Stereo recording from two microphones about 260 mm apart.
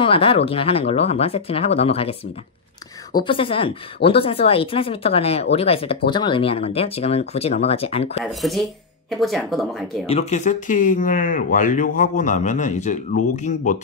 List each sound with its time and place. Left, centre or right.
0.0 s speech: left
3.3 s speech: left
8.2 s speech: centre
10.0 s speech: left